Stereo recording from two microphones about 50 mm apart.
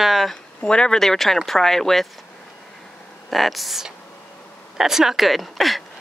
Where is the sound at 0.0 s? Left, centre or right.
Centre.